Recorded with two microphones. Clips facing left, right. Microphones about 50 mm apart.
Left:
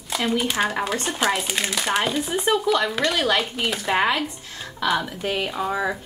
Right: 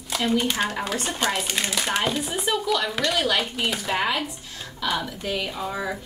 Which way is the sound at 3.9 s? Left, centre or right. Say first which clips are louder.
Left 6 dB; left.